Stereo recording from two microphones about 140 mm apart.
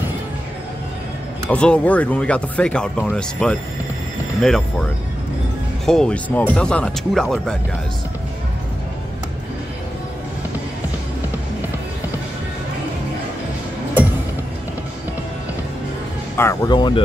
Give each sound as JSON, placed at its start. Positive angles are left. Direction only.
{"t": 1.5, "sound": "speech", "side_deg": 10}
{"t": 5.9, "sound": "speech", "side_deg": 5}
{"t": 16.6, "sound": "speech", "side_deg": 30}